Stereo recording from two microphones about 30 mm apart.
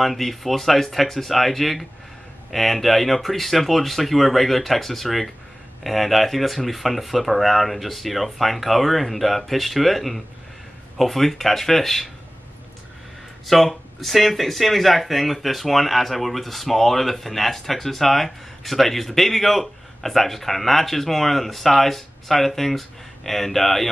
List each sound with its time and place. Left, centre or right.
0.0 s speech: centre
13.5 s speech: centre